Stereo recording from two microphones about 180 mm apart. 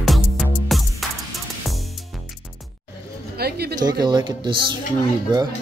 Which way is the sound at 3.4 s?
65° right (ahead or behind).